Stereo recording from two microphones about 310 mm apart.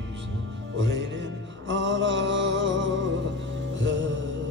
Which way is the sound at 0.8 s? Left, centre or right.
Right.